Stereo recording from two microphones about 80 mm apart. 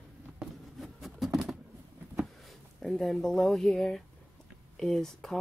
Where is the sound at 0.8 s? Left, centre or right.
Centre.